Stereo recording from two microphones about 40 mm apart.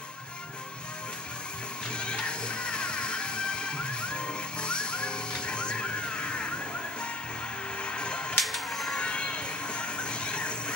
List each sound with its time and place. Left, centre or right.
2.0 s music: left
7.8 s music: left
8.4 s music: centre
8.9 s music: left